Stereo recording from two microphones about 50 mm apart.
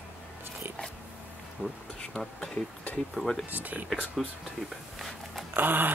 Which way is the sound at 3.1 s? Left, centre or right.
Centre.